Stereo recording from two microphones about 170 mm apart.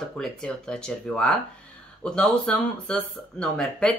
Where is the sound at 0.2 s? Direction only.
5° left (ahead or behind).